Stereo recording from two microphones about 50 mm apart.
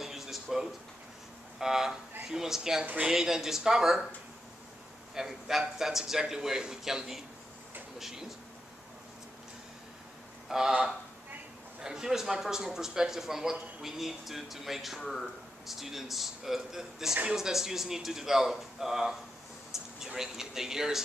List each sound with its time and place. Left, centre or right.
0.0 s a sound: centre
1.6 s a man's voice: centre
5.1 s a man's voice: centre
10.5 s a man's voice: centre
15.0 s speech: centre
15.6 s a man's voice: centre
19.7 s a sound: centre
20.1 s a man's voice: centre